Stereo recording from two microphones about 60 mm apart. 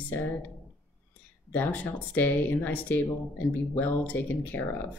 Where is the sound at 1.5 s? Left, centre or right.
Left.